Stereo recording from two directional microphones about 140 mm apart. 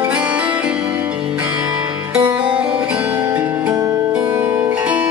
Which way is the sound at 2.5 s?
10° right (ahead or behind).